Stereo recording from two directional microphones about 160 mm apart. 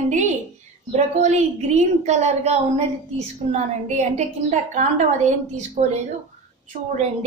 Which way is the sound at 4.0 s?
50° right (ahead or behind).